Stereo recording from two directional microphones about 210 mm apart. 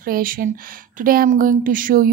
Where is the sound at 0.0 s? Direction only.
45° right (ahead or behind).